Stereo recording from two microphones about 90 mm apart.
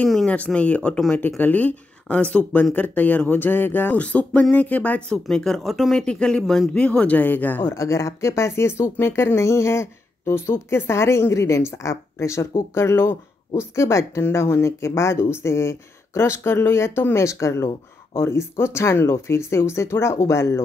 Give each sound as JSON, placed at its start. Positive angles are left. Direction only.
{"t": 0.3, "sound": "speech", "side_deg": 15}
{"t": 7.7, "sound": "speech", "side_deg": 35}